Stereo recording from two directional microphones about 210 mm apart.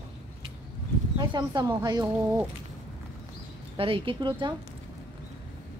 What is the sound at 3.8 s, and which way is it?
Speech, 25° right (ahead or behind).